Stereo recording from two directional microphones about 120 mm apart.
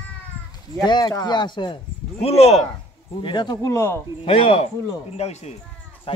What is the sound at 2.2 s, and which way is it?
Speech, 65° left (ahead or behind).